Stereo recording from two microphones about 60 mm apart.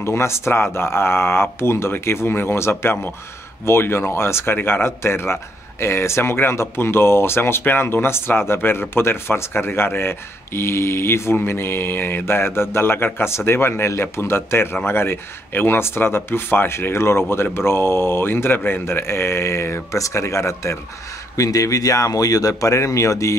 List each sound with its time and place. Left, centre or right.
0.0 s speech: left
21.4 s speech: left